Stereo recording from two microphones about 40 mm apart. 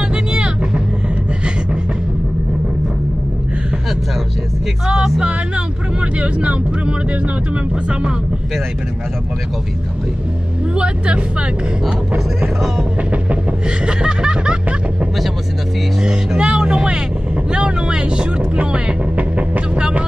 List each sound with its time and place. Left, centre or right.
0.1 s vehicle: right
4.8 s music: centre
5.9 s speech: right
13.8 s snicker: right
16.0 s vehicle: centre; by 19.8 s right